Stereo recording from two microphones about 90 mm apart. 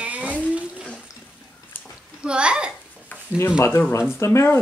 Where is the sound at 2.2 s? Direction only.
10° right (ahead or behind).